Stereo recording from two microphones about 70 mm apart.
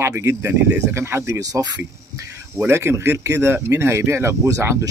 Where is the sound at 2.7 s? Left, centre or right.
Right.